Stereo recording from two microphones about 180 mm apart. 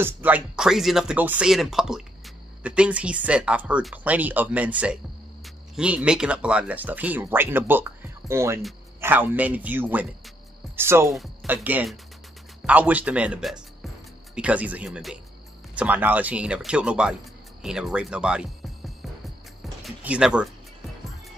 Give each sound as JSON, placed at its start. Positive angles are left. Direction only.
{"t": 0.0, "sound": "speech", "side_deg": -10}
{"t": 19.6, "sound": "music", "side_deg": -5}